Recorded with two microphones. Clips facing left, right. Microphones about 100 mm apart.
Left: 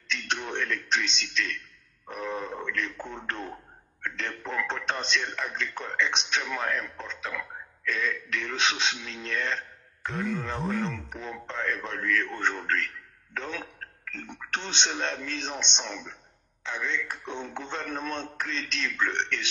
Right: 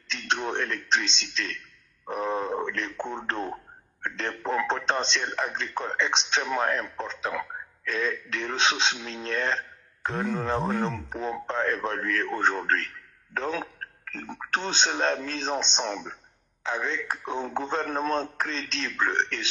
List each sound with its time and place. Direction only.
0.1 s speech: 35° right (ahead or behind)